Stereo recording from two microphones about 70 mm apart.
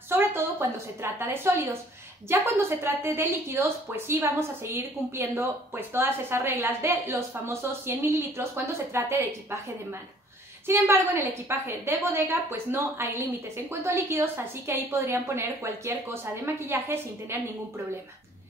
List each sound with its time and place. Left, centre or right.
0.1 s a woman's voice: right
11.4 s a woman's voice: right